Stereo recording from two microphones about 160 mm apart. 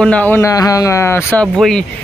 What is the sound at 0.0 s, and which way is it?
Speech, 10° left (ahead or behind).